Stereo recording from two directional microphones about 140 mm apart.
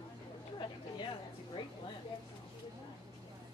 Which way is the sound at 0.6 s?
35° left (ahead or behind).